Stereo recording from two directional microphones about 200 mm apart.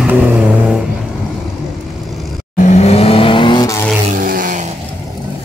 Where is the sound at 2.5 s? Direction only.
35° left (ahead or behind); by 3.8 s 20° left (ahead or behind).